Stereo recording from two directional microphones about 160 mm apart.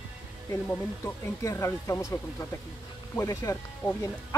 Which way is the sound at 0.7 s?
15° left (ahead or behind).